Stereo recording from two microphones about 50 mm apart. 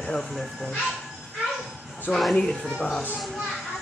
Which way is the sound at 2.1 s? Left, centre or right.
Centre.